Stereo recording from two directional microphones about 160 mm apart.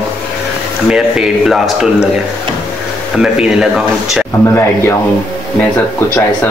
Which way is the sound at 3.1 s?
5° right (ahead or behind).